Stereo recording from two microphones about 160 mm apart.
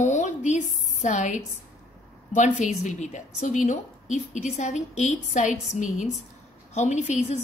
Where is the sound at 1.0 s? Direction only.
50° left (ahead or behind).